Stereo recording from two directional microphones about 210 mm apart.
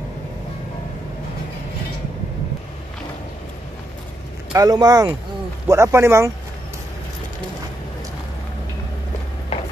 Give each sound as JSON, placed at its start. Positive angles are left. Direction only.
{"t": 4.5, "sound": "speech", "side_deg": -15}